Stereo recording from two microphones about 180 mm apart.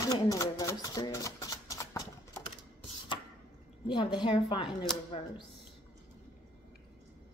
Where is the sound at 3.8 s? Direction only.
25° left (ahead or behind).